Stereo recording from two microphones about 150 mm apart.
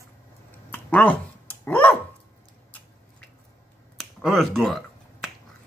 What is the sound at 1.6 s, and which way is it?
Dog, 10° left (ahead or behind).